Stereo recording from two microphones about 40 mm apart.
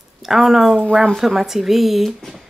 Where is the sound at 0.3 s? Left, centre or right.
Centre.